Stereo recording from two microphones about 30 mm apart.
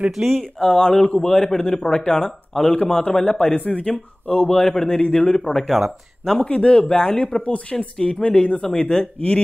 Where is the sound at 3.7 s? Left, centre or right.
Left.